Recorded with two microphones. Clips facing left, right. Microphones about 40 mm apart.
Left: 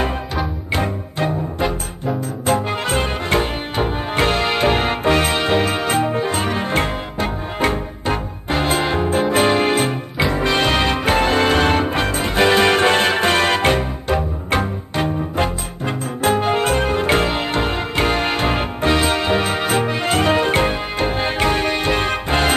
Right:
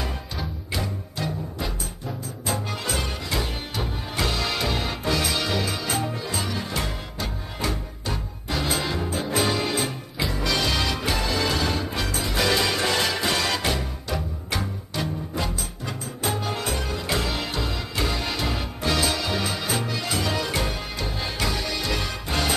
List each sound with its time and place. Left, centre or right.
0.7 s music: left